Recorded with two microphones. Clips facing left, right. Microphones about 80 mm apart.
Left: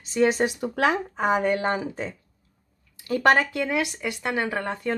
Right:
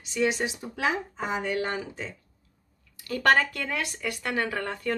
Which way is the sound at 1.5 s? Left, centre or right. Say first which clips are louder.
Left 5 dB; left.